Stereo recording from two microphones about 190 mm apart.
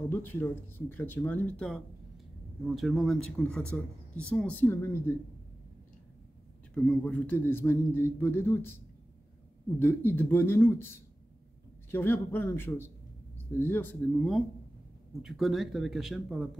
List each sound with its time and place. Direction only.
0.1 s a man's voice: 10° left (ahead or behind)
6.7 s a man's voice: 5° left (ahead or behind)